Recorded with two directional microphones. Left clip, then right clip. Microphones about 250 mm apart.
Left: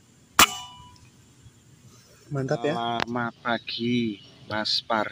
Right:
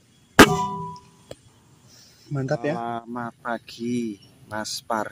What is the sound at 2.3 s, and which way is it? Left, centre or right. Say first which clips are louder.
Speech: right 1 dB; right.